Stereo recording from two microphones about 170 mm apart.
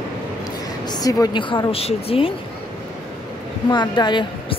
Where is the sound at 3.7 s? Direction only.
25° left (ahead or behind).